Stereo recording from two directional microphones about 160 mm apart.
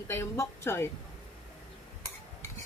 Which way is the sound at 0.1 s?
15° left (ahead or behind).